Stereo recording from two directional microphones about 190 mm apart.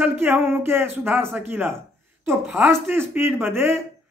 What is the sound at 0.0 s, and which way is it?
Speech, 10° right (ahead or behind).